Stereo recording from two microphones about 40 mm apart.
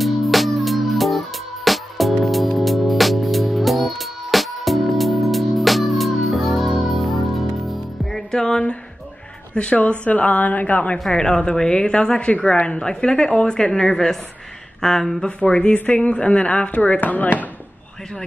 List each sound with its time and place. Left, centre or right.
0.0 s music: centre
9.5 s a woman's voice: left
11.1 s a woman's voice: centre
15.2 s a woman's voice: left